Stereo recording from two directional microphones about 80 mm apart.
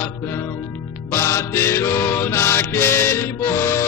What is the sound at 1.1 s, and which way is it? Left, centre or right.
Mantra, left.